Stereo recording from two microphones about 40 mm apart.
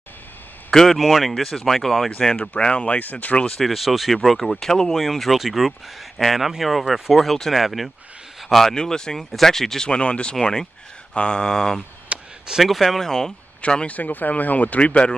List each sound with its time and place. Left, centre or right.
0.7 s speech: centre
1.6 s mantra: centre
2.6 s speech: left
3.6 s speech: centre
4.6 s speech: centre
8.7 s mantra: centre
9.8 s speech: left
10.4 s mantra: centre
12.1 s a sound: right
12.5 s speech: centre
12.8 s mantra: centre
13.6 s speech: left
13.8 s speech: left